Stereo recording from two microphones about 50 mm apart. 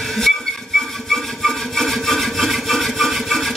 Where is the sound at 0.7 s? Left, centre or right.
Centre.